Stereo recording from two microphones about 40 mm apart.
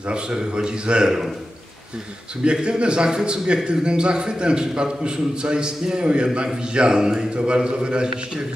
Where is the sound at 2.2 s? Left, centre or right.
Right.